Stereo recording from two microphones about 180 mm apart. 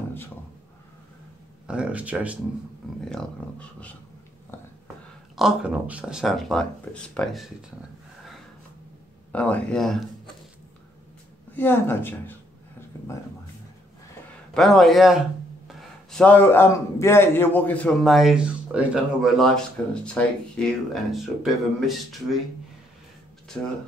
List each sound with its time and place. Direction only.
1.7 s speech: 5° right (ahead or behind)
3.1 s speech: 5° left (ahead or behind)
5.3 s a man's voice: 5° right (ahead or behind)
9.3 s a man's voice: 5° left (ahead or behind)
11.5 s speech: 10° left (ahead or behind)
14.5 s a man's voice: centre (ahead or behind)